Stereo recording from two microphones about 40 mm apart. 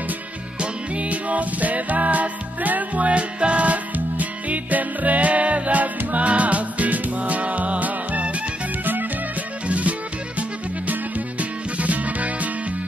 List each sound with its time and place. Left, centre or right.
0.6 s music: right
9.7 s music: right